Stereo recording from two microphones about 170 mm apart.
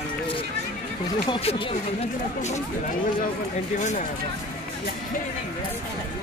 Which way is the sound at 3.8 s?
45° left (ahead or behind).